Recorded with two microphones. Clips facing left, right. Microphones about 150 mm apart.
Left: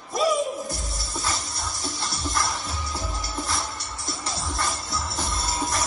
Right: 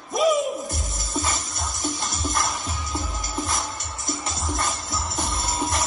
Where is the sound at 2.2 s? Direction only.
Centre (ahead or behind).